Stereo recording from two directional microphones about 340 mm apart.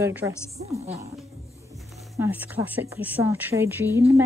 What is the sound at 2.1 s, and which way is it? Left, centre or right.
A woman's voice, centre.